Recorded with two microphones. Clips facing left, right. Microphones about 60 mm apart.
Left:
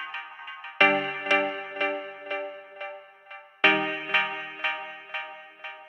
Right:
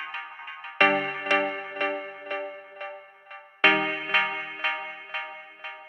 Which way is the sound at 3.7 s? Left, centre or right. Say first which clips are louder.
Right 1 dB; right.